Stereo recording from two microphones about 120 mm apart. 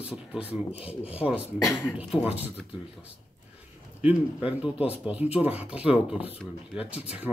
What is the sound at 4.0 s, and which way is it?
Speech, 10° right (ahead or behind).